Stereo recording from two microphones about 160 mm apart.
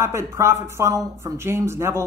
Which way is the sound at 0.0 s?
15° right (ahead or behind).